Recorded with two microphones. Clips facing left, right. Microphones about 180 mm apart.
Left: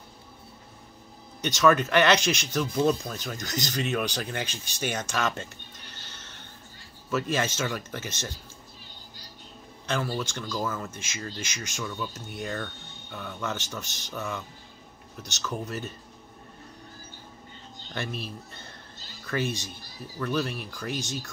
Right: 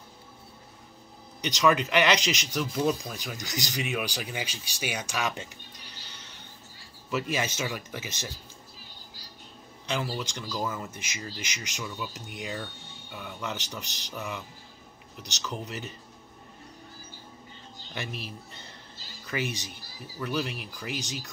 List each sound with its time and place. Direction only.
1.4 s speech: 15° right (ahead or behind)
10.1 s speech: 15° right (ahead or behind)
17.9 s speech: 15° right (ahead or behind)